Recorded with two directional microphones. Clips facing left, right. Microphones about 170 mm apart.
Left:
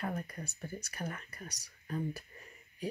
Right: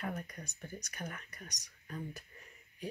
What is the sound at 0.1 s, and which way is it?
Speech, 5° left (ahead or behind).